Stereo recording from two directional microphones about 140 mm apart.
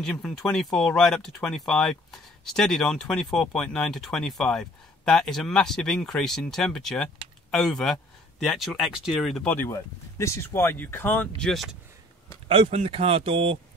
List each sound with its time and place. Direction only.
0.0 s speech: 5° left (ahead or behind)
12.4 s a man's voice: 45° right (ahead or behind)